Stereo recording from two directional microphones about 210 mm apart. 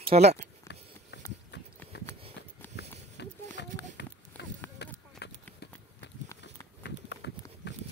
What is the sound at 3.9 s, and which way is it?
Run, 55° left (ahead or behind).